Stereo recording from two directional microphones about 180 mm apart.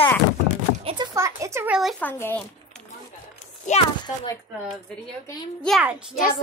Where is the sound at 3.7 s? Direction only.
40° left (ahead or behind).